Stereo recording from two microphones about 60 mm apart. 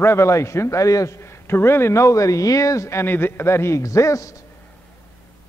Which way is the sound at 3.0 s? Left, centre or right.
Left.